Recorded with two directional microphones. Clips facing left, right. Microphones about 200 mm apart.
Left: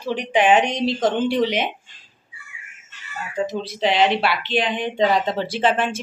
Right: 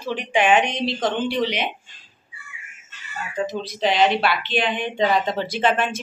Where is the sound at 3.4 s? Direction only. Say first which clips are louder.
Even; 30° left (ahead or behind).